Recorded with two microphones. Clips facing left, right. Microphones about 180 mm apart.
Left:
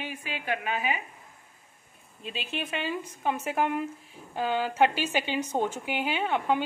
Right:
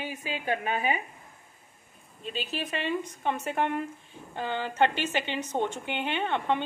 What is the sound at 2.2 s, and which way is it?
Speech, centre (ahead or behind).